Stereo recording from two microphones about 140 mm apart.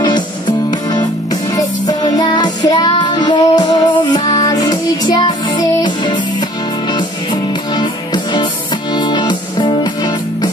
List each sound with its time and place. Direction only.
0.0 s music: 30° left (ahead or behind)
7.7 s music: 35° left (ahead or behind)